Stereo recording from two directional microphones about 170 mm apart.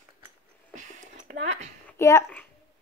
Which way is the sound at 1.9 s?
15° left (ahead or behind).